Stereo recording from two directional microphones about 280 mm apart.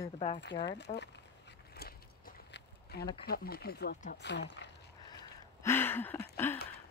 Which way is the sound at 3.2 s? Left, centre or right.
Left.